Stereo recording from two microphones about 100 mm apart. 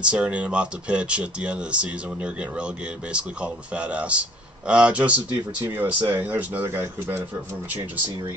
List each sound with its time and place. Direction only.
0.0 s speech: 10° right (ahead or behind)